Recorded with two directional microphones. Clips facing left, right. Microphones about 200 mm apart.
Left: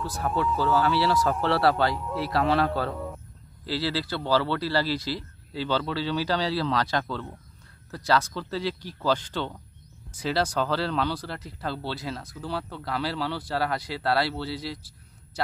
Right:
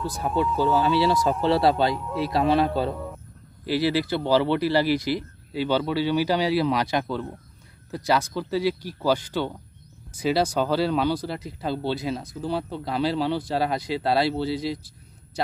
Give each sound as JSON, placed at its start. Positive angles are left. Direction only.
{"t": 0.0, "sound": "speech", "side_deg": -15}